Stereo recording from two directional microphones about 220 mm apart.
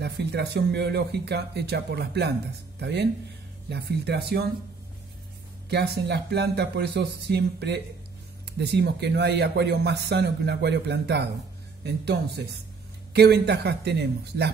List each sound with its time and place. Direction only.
0.0 s speech: 50° right (ahead or behind)
5.7 s speech: 50° right (ahead or behind)